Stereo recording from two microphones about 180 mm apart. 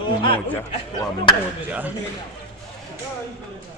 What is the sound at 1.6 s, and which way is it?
Speech, 10° right (ahead or behind).